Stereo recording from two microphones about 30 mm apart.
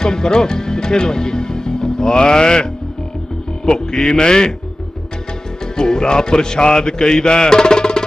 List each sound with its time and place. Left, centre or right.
0.0 s speech: left
3.7 s music: left
5.8 s music: left